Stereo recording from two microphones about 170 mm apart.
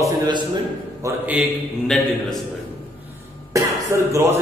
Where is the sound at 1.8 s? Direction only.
Centre (ahead or behind).